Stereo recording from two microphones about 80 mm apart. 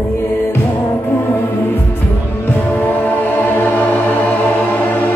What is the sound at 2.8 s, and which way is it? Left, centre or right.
Music, left.